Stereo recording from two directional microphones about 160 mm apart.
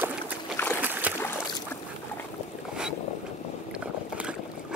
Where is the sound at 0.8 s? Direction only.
10° right (ahead or behind).